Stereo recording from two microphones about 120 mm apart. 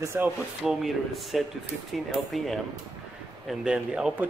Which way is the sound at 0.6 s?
5° right (ahead or behind).